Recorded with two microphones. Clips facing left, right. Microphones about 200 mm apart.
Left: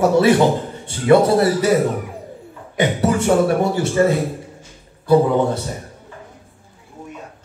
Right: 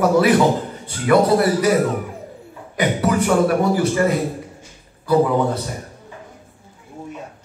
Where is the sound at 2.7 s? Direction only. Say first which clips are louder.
Left 1 dB; 25° left (ahead or behind).